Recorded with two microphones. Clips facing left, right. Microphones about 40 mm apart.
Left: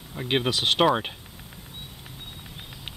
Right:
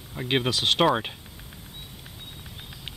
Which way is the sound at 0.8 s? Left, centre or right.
Centre.